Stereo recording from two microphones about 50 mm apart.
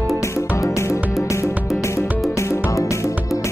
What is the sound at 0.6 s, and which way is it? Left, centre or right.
Music, left.